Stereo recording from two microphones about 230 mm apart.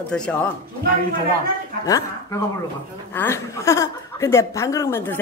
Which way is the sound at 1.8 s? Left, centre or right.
Centre.